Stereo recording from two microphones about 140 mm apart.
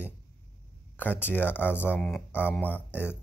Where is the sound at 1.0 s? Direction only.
15° left (ahead or behind).